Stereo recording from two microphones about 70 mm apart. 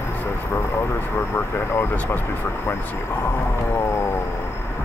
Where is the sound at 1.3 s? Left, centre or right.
Left.